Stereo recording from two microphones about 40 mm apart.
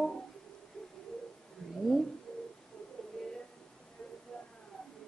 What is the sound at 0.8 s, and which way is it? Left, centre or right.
Owl, centre.